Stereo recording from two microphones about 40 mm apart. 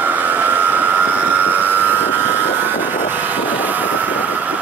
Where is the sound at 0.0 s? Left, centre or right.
Right.